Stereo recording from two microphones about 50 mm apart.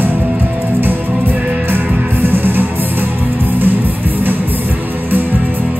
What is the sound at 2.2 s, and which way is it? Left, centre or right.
Music, right.